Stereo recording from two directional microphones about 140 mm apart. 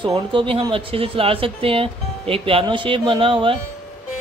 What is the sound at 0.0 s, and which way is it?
Speech, 35° right (ahead or behind).